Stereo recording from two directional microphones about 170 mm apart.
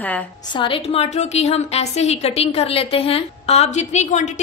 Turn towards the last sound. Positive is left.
turn(degrees=40)  # may be behind; listen again after turning